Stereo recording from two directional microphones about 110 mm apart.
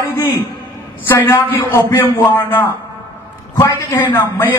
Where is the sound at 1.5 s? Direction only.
25° left (ahead or behind).